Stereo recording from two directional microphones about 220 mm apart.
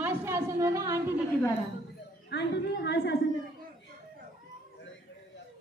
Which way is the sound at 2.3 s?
50° left (ahead or behind).